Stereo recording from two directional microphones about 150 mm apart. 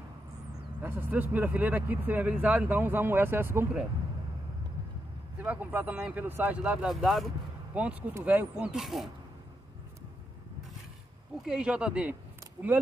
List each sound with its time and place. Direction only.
0.8 s speech: 15° right (ahead or behind)
5.4 s speech: 10° right (ahead or behind)
11.4 s speech: 5° right (ahead or behind)